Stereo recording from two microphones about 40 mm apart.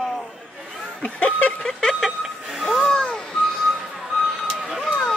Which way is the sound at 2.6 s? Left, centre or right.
Centre.